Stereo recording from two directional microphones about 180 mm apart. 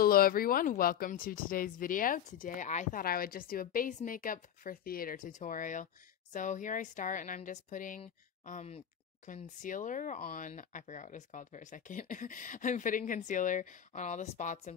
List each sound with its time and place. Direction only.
0.0 s speech: 55° left (ahead or behind)